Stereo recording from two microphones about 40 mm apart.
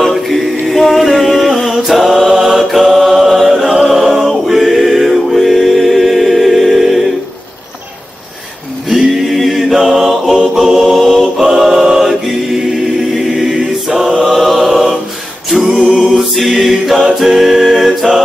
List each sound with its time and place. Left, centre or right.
0.0 s a capella: centre
1.8 s mantra: centre
3.7 s music: centre
4.0 s choir: centre
8.8 s choir: centre
11.3 s choir: centre
14.3 s music: centre
17.2 s a capella: centre